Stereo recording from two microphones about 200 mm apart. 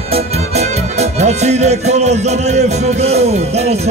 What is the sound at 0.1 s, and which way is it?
Music, 30° right (ahead or behind).